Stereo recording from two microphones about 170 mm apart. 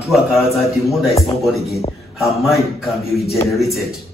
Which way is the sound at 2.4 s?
Centre (ahead or behind).